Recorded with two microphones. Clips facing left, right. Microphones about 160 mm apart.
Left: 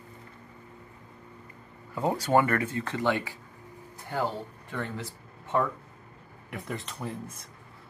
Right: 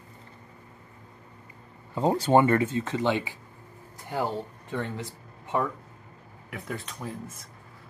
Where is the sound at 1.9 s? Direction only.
25° right (ahead or behind).